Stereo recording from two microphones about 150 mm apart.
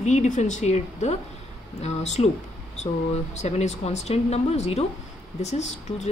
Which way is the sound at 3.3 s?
50° left (ahead or behind).